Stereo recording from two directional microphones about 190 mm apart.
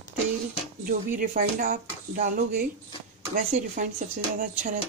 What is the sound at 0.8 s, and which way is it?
Speech, 45° right (ahead or behind).